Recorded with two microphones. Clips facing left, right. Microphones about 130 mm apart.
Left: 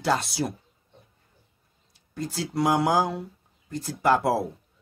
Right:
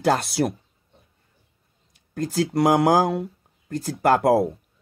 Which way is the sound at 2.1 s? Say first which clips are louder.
Right 6 dB; 50° right (ahead or behind).